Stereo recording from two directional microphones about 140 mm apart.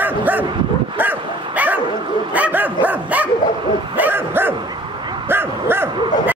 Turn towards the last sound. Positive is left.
turn(degrees=-15)  # may be behind; listen again after turning